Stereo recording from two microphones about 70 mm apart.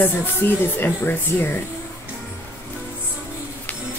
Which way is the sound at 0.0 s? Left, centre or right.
Left.